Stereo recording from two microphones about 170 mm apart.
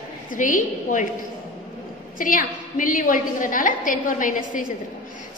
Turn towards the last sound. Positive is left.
turn(degrees=50)  # may be behind; listen again after turning